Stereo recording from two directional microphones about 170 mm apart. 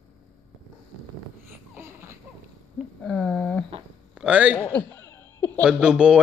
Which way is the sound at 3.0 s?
5° left (ahead or behind).